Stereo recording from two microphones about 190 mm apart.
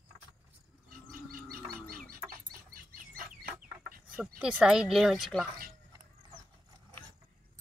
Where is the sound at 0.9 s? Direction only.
50° right (ahead or behind).